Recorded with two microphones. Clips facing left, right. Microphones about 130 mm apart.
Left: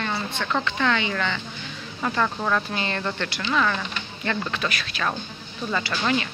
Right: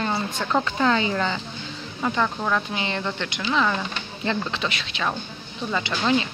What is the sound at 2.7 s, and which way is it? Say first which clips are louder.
Speech: even; 15° right (ahead or behind).